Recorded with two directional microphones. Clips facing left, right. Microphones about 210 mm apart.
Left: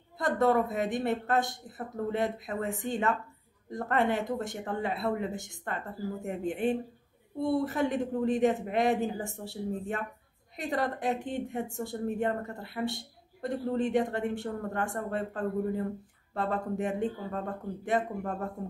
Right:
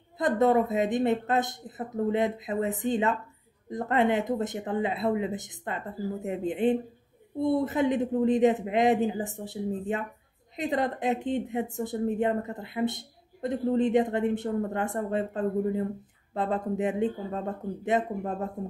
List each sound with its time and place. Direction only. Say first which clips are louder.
0.2 s speech: right 3 dB; 20° right (ahead or behind)